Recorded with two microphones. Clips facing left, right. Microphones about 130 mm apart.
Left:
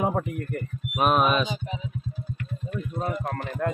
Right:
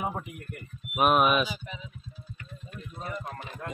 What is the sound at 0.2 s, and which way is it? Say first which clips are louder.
Speech: left 11 dB; 50° left (ahead or behind).